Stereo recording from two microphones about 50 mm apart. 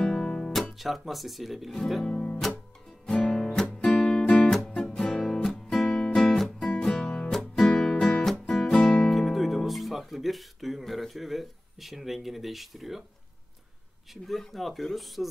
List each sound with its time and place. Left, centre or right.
0.0 s guitar: centre
0.7 s speech: centre
2.0 s music: centre
9.1 s guitar: centre
14.1 s speech: centre